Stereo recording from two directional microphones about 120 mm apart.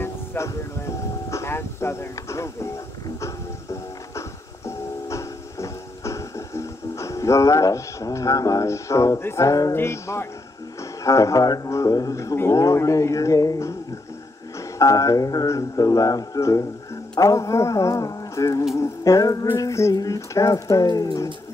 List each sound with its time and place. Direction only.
0.0 s music: 20° left (ahead or behind)
1.3 s speech: 20° left (ahead or behind)
3.2 s music: 25° left (ahead or behind)
10.8 s speech: 25° left (ahead or behind)